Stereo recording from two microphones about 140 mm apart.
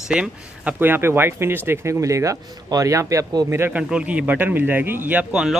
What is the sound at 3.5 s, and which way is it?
Speech, 15° right (ahead or behind).